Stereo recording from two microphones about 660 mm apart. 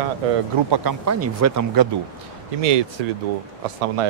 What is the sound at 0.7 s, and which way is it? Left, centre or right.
Speech, right.